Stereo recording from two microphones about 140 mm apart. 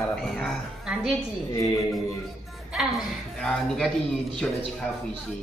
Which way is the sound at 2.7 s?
Centre (ahead or behind).